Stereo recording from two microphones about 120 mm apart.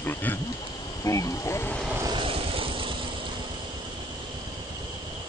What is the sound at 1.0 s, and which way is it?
Speech, 25° left (ahead or behind).